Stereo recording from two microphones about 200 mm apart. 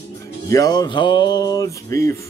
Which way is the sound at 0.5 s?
20° left (ahead or behind).